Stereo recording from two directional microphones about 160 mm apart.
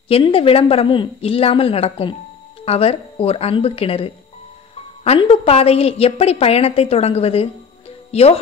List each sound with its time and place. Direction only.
0.1 s a woman's voice: 35° left (ahead or behind)